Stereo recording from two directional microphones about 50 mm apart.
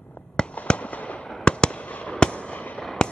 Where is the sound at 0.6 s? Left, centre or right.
Left.